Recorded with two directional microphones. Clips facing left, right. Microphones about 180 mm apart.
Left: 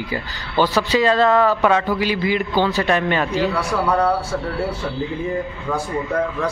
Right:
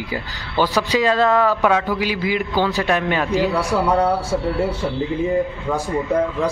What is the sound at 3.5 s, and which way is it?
Speech, 20° right (ahead or behind).